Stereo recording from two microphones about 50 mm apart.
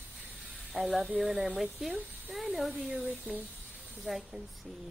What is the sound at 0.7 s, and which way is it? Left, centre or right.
A woman's voice, centre.